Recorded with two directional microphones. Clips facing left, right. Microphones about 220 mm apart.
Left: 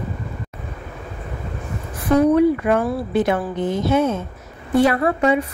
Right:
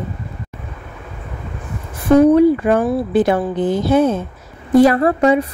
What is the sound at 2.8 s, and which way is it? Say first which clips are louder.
Speech: right 5 dB; 20° right (ahead or behind).